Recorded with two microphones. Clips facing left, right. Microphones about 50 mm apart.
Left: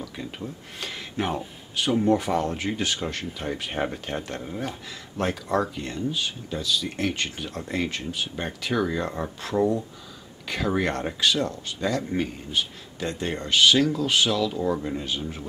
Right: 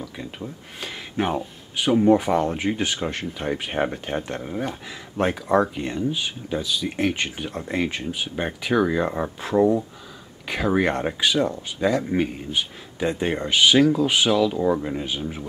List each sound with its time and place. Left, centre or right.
0.0 s speech: centre